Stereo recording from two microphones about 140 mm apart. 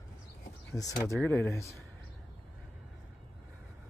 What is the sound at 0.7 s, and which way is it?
Speech, 20° left (ahead or behind).